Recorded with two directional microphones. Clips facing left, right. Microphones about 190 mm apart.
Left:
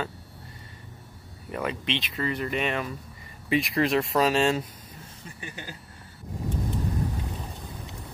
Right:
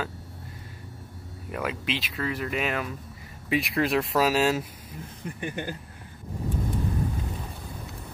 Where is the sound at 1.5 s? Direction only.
5° right (ahead or behind).